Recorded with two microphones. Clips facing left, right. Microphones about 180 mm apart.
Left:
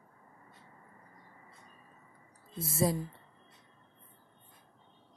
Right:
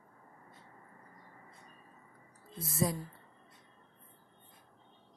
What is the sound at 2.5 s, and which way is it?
Speech, 25° left (ahead or behind).